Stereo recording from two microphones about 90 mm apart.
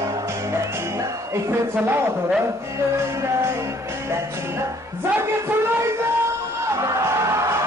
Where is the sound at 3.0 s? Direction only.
30° right (ahead or behind).